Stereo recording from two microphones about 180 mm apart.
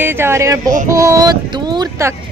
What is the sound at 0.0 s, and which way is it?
Speech, 15° right (ahead or behind).